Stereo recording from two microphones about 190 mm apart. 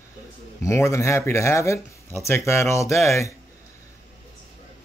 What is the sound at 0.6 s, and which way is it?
Speech, 15° left (ahead or behind).